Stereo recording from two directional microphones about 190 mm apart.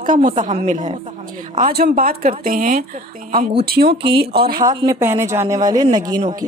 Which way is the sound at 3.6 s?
55° right (ahead or behind).